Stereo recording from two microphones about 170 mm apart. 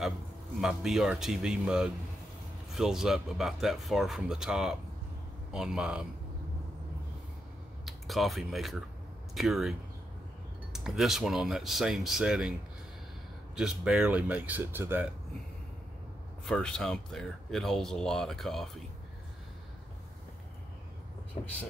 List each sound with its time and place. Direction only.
0.6 s speech: centre (ahead or behind)
7.8 s speech: centre (ahead or behind)
13.6 s speech: 5° right (ahead or behind)
16.4 s speech: 5° left (ahead or behind)
21.4 s speech: 30° left (ahead or behind)